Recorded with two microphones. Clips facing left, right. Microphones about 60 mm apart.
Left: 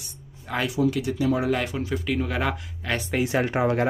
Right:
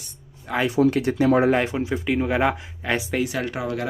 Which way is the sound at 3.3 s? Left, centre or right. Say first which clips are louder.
Left 4 dB; left.